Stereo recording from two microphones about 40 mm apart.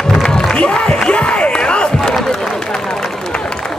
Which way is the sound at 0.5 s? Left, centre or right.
Left.